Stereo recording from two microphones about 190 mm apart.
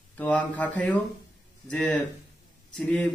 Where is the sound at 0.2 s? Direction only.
10° left (ahead or behind).